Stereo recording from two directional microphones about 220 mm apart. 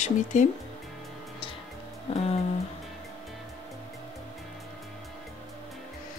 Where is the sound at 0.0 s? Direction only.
35° left (ahead or behind).